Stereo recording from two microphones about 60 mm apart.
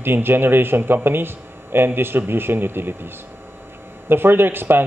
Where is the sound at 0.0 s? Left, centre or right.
Right.